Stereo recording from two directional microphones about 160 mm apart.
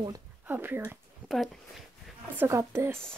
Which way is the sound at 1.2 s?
Centre (ahead or behind).